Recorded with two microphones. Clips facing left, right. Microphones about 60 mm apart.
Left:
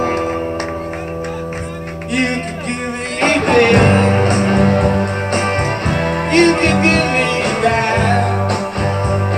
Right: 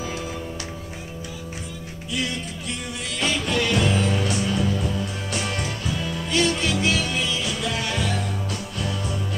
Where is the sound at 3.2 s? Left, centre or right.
Left.